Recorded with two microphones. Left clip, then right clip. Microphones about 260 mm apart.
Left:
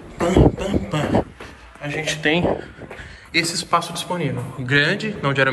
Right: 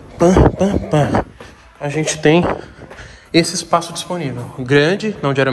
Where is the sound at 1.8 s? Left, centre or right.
Right.